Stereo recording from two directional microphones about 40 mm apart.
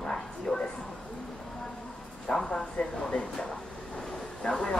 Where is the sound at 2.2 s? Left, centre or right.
Centre.